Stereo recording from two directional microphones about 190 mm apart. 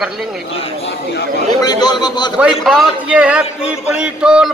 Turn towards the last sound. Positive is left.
turn(degrees=-5)  # may be behind; listen again after turning